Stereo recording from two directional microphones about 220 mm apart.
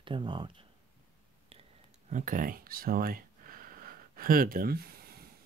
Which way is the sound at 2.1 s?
40° right (ahead or behind).